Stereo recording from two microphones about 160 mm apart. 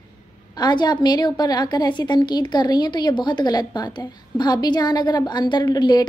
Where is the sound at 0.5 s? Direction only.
25° left (ahead or behind).